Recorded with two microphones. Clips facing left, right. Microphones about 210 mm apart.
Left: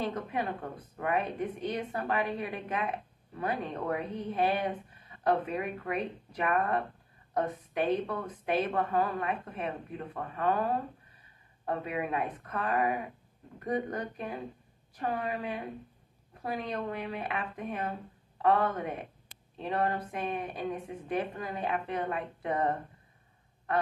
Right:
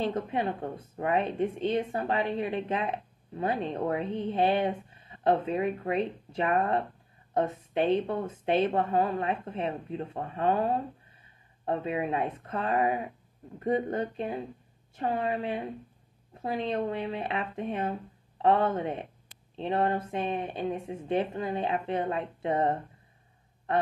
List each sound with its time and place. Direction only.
0.0 s speech: 30° right (ahead or behind)
23.7 s quack: 25° right (ahead or behind)